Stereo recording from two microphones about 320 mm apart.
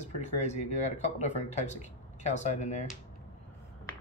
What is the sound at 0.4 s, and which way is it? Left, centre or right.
Speech, left.